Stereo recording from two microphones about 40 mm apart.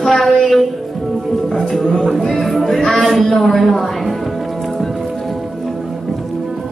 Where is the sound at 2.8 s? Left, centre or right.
Centre.